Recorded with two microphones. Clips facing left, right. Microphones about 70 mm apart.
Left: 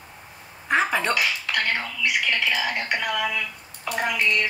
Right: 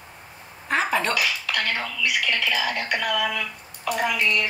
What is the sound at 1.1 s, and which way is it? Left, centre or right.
Dishes, left.